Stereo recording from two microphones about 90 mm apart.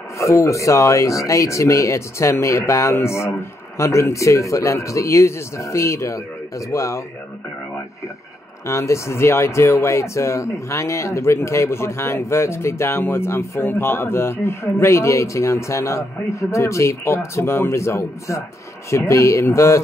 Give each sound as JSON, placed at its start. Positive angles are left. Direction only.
{"t": 0.2, "sound": "speech", "side_deg": 35}
{"t": 8.6, "sound": "speech", "side_deg": 35}